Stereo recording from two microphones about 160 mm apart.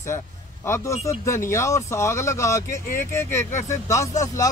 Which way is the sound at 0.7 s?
20° left (ahead or behind).